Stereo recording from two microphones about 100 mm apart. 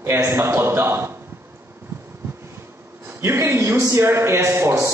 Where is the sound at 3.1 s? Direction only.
25° right (ahead or behind).